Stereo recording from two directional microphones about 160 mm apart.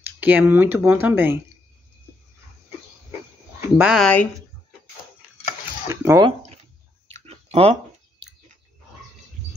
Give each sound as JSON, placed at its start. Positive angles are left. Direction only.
{"t": 0.2, "sound": "speech", "side_deg": -10}
{"t": 3.7, "sound": "speech", "side_deg": -5}
{"t": 4.0, "sound": "speech", "side_deg": 10}
{"t": 5.9, "sound": "speech", "side_deg": -20}
{"t": 7.1, "sound": "clicking", "side_deg": -40}